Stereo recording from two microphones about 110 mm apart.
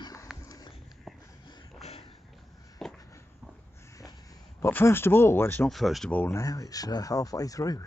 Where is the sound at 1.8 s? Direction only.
60° left (ahead or behind).